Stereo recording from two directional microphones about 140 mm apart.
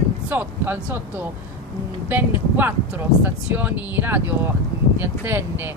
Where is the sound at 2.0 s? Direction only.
15° right (ahead or behind).